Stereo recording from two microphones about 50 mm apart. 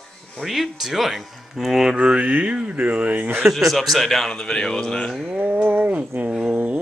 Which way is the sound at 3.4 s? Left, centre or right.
Centre.